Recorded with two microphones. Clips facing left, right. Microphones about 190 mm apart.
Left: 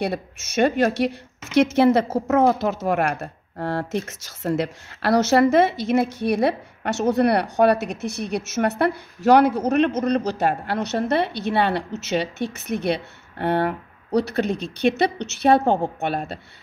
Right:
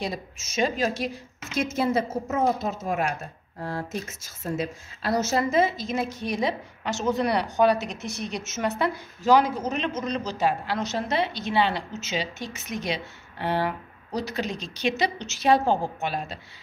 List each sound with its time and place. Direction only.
0.0 s a woman's voice: 65° left (ahead or behind)